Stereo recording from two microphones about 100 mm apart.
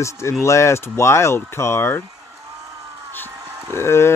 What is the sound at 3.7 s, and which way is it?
Speech, 25° left (ahead or behind).